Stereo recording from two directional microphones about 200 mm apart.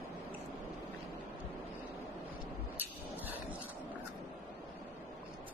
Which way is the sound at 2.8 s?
10° right (ahead or behind).